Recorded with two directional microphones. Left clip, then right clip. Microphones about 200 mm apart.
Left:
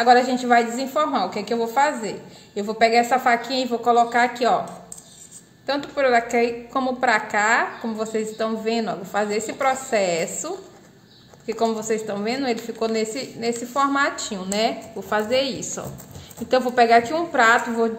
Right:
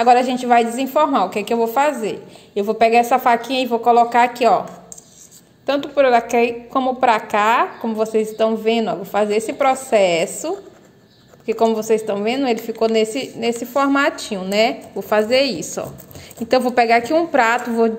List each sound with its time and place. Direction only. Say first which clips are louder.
0.0 s a woman's voice: right 2 dB; 30° right (ahead or behind)
5.9 s a woman's voice: right 4 dB; 25° right (ahead or behind)